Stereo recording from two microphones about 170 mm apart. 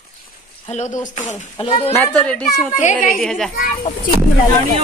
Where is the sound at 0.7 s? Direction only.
45° left (ahead or behind).